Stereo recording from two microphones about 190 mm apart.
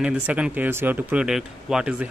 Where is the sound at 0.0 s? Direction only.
5° right (ahead or behind).